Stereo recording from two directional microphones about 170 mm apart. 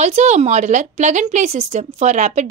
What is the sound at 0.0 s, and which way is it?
A woman's voice, 40° right (ahead or behind).